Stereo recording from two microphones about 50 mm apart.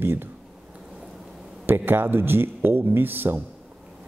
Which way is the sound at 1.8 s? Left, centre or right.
Right.